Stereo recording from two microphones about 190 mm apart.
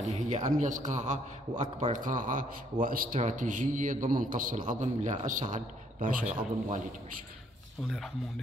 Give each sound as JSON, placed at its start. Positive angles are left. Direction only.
{"t": 0.1, "sound": "a man's voice", "side_deg": -40}